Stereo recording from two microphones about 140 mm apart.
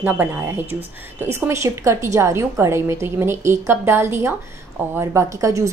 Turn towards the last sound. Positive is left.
turn(degrees=-20)  # may be behind; listen again after turning